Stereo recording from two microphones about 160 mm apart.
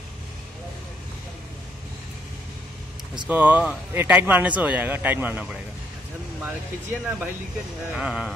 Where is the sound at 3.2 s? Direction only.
10° right (ahead or behind).